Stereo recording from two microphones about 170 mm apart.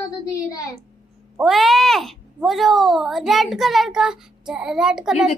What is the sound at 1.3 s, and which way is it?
Speech, centre (ahead or behind).